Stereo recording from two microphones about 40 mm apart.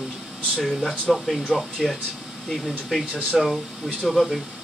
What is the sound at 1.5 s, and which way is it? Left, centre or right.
Speech, right.